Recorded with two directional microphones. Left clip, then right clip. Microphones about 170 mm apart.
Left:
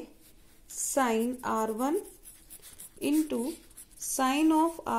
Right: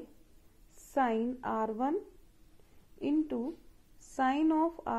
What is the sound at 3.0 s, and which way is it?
Speech, 15° left (ahead or behind).